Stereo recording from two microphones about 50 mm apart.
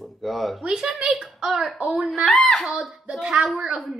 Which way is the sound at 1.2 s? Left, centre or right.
Centre.